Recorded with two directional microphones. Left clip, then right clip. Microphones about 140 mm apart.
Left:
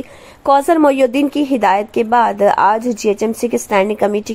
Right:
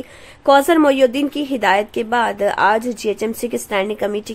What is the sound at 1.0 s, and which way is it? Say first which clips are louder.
A woman's voice: left 2 dB; 25° left (ahead or behind).